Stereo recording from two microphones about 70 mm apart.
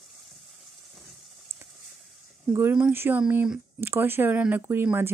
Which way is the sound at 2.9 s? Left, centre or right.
Right.